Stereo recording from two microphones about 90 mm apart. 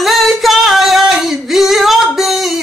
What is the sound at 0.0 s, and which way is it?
Singing, centre (ahead or behind).